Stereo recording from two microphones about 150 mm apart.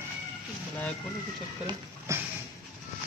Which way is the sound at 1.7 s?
20° right (ahead or behind).